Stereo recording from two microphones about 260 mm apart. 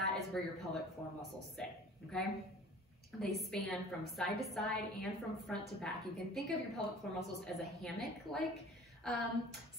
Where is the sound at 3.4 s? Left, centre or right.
Centre.